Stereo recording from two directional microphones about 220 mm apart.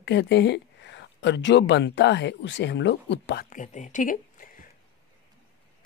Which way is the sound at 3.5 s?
35° left (ahead or behind).